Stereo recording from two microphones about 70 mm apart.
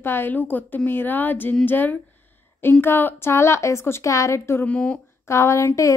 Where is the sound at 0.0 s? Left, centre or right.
Left.